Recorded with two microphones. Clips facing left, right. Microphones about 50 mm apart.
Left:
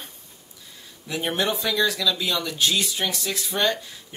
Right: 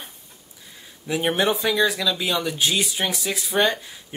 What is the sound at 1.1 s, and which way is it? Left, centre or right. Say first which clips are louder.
Speech: right 4 dB; centre.